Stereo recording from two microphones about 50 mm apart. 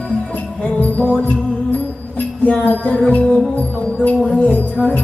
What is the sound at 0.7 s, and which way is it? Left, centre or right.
Music, left.